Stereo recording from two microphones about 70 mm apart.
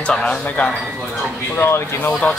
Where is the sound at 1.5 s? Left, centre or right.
Left.